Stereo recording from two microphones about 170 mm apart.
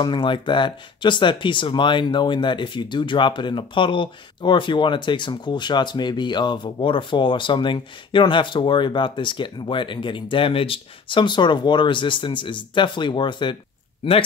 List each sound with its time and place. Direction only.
0.0 s speech: 30° left (ahead or behind)